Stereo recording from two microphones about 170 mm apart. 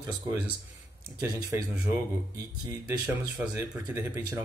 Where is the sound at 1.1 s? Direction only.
20° right (ahead or behind).